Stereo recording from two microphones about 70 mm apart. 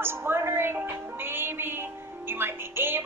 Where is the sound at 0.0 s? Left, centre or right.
Right.